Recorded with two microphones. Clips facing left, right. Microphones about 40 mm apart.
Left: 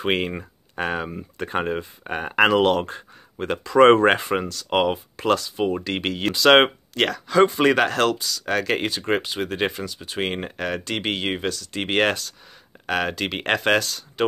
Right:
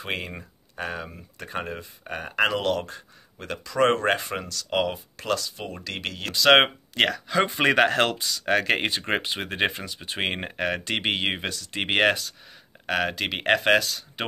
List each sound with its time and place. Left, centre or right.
0.0 s speech: left
6.3 s speech: centre
6.9 s speech: centre
7.5 s speech: right
12.8 s speech: centre